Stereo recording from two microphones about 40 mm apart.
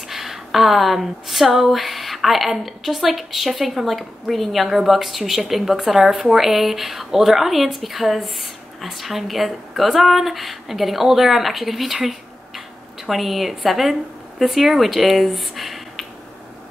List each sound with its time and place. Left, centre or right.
0.1 s a woman's voice: centre